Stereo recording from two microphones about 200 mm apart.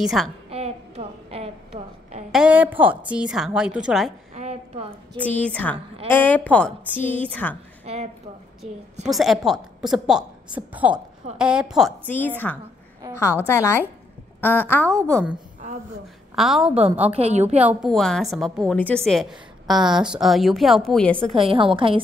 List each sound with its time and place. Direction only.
0.0 s a woman's voice: centre (ahead or behind)
0.5 s a sound: 30° right (ahead or behind)
2.3 s a woman's voice: 5° right (ahead or behind)
4.4 s a sound: 35° right (ahead or behind)
5.1 s a woman's voice: 5° left (ahead or behind)
7.8 s a sound: 30° right (ahead or behind)
9.0 s a woman's voice: centre (ahead or behind)
16.3 s a woman's voice: centre (ahead or behind)
17.1 s a woman's voice: 30° right (ahead or behind)
17.6 s a woman's voice: 5° right (ahead or behind)
21.4 s a woman's voice: 25° right (ahead or behind)